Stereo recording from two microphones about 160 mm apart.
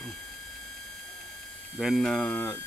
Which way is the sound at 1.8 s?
Centre (ahead or behind).